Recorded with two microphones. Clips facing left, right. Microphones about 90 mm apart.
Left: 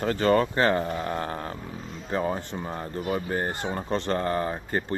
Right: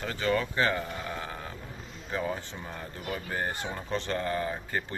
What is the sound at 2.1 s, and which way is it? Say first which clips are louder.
Speech: left 5 dB; 35° left (ahead or behind).